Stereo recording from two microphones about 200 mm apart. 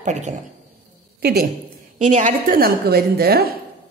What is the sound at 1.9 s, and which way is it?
A woman's voice, 35° right (ahead or behind).